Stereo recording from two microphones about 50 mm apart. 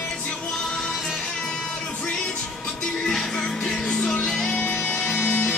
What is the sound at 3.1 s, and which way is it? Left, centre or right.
Music, centre.